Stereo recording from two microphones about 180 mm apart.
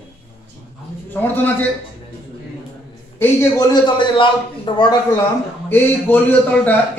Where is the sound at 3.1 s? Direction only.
15° left (ahead or behind).